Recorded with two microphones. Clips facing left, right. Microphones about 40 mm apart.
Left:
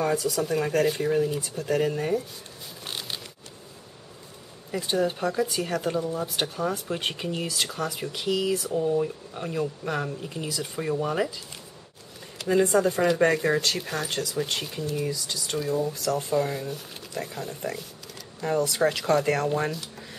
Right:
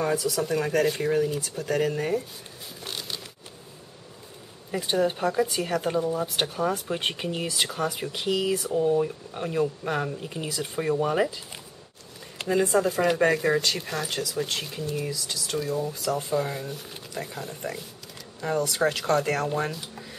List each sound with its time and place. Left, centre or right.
0.0 s speech: centre
2.8 s a sound: centre
4.6 s speech: centre
12.4 s speech: centre
15.9 s speech: centre